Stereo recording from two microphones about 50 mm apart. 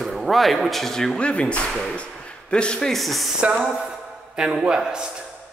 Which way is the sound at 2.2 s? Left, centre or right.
Centre.